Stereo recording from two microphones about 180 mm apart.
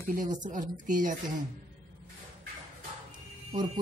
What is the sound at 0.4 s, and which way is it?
Speech, 45° right (ahead or behind).